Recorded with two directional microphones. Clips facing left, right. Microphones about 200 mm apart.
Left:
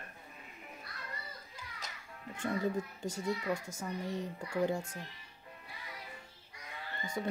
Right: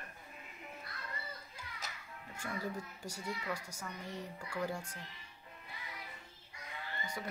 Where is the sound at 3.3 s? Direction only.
25° left (ahead or behind).